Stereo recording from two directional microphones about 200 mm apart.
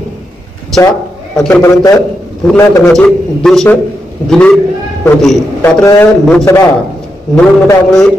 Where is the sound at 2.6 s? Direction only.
15° left (ahead or behind).